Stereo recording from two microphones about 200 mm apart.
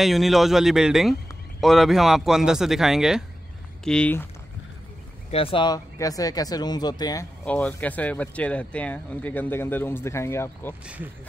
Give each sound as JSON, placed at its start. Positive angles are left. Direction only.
{"t": 0.0, "sound": "speech", "side_deg": 0}
{"t": 5.3, "sound": "speech", "side_deg": 25}
{"t": 7.4, "sound": "speech", "side_deg": 5}